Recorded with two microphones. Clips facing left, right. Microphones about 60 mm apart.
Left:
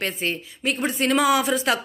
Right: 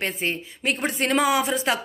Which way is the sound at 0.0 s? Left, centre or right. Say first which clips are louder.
Even; right.